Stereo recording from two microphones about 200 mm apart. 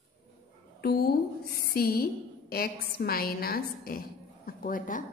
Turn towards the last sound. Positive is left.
turn(degrees=40)  # may be behind; listen again after turning